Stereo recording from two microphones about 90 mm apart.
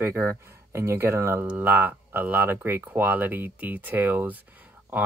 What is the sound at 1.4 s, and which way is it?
Speech, 20° right (ahead or behind).